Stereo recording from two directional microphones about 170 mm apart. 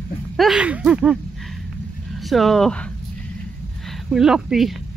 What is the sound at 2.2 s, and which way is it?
Speech, centre (ahead or behind).